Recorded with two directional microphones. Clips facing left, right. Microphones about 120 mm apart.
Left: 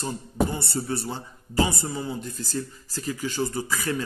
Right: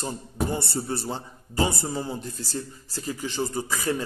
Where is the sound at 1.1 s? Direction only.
30° right (ahead or behind).